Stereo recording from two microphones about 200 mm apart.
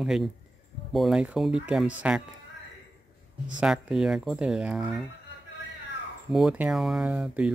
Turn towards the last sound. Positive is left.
turn(degrees=-5)  # may be behind; listen again after turning